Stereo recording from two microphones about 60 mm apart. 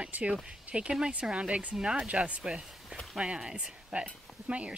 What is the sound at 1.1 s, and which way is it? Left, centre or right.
A woman's voice, centre.